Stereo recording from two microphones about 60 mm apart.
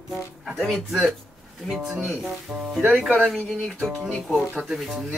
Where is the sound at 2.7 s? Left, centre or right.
Centre.